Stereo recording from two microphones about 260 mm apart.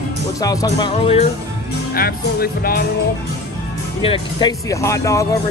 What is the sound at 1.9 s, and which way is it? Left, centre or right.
Speech, left.